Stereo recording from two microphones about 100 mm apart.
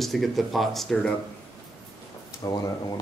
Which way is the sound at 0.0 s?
Centre (ahead or behind).